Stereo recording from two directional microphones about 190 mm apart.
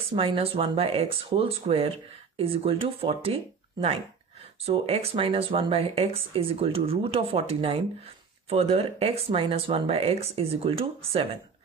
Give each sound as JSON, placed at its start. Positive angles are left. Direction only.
{"t": 0.1, "sound": "speech", "side_deg": -30}
{"t": 4.6, "sound": "speech", "side_deg": -30}